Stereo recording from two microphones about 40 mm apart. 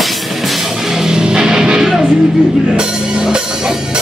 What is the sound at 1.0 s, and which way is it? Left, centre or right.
Music, centre.